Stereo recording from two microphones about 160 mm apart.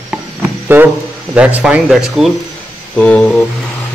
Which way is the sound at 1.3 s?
5° right (ahead or behind).